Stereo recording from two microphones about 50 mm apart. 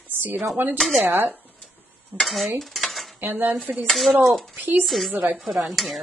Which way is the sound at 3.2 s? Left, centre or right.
Right.